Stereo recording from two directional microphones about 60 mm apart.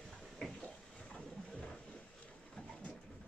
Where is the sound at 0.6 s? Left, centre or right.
Centre.